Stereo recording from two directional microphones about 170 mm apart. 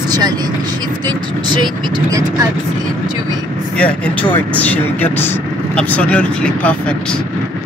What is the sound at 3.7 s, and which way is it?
Speech, 5° left (ahead or behind).